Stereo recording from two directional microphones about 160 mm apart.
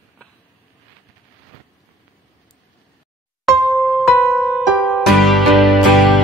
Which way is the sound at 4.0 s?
Centre (ahead or behind).